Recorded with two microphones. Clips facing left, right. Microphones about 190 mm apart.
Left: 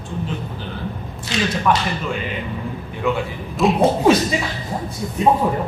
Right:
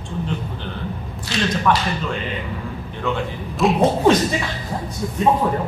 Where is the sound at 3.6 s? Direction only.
Centre (ahead or behind).